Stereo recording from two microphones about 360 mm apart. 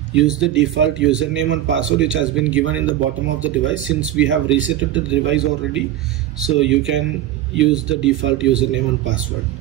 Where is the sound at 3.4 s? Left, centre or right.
Right.